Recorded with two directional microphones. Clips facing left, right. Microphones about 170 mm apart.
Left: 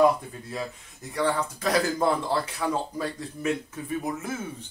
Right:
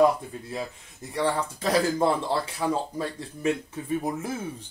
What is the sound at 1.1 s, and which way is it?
Speech, 30° right (ahead or behind).